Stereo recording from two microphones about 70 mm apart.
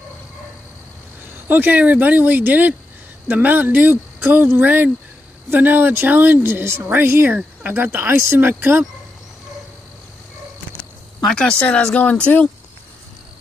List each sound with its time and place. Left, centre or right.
1.5 s speech: right
11.2 s speech: centre